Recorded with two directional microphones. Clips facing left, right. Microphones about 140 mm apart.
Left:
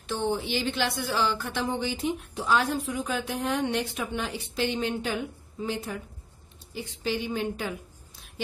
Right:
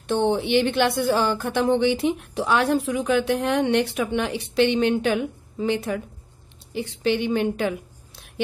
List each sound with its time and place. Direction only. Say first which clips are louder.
0.0 s speech: right 7 dB; 65° right (ahead or behind)